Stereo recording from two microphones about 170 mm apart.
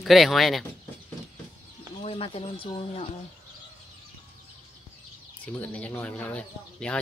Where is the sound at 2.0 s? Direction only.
35° left (ahead or behind).